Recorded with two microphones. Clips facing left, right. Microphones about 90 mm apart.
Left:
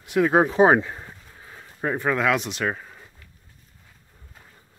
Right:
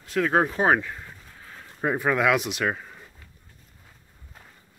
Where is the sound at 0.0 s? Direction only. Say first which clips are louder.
Left 3 dB; 15° left (ahead or behind).